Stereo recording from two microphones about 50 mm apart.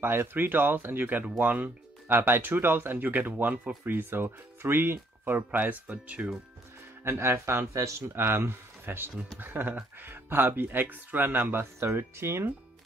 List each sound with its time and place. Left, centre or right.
0.0 s speech: right
1.4 s speech: right
2.0 s speech: right
5.9 s speech: right
7.1 s speech: right
11.8 s speech: right